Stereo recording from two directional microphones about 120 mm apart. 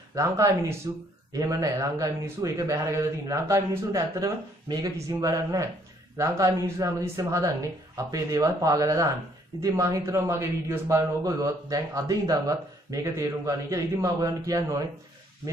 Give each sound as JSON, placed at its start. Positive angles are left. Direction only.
{"t": 0.1, "sound": "a man's voice", "side_deg": -25}